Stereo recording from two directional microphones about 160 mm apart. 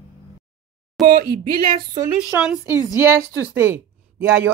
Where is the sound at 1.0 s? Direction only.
Centre (ahead or behind).